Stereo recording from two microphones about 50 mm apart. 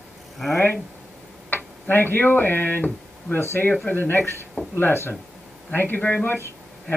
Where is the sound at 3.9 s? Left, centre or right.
Left.